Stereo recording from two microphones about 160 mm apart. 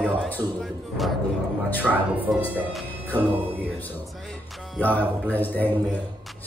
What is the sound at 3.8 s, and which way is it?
A man's voice, 10° left (ahead or behind).